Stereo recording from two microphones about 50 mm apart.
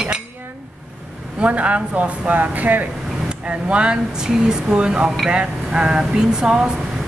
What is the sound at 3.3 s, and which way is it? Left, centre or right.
Speech, right.